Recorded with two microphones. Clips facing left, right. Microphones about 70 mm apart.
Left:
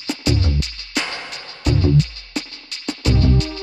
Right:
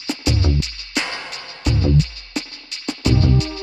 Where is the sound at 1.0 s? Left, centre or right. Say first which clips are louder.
Even; centre.